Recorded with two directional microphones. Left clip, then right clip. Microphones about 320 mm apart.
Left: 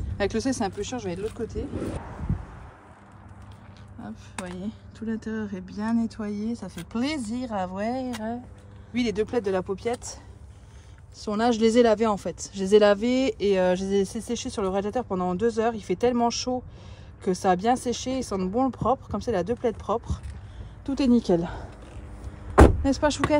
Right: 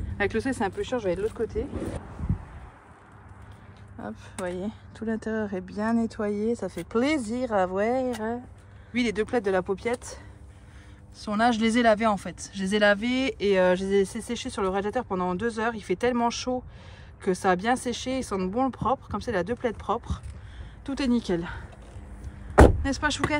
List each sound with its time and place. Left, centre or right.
0.2 s speech: centre
4.0 s speech: centre
22.8 s speech: centre